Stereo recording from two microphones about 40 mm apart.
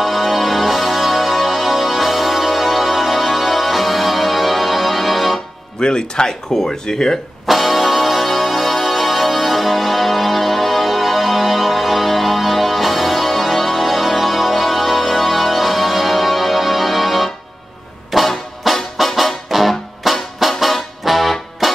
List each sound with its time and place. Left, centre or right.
0.0 s music: centre
5.8 s speech: left
7.4 s music: centre